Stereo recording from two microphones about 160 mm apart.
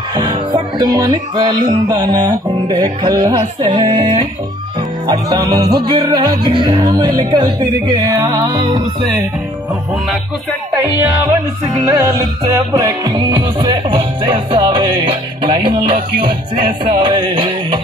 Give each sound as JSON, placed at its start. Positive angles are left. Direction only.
{"t": 0.1, "sound": "music", "side_deg": -25}
{"t": 10.7, "sound": "music", "side_deg": -20}